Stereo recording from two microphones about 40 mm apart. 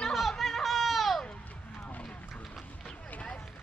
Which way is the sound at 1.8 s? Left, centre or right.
Left.